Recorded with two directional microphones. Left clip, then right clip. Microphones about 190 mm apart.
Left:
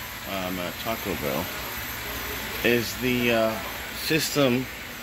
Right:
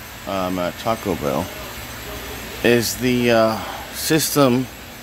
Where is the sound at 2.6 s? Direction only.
25° right (ahead or behind).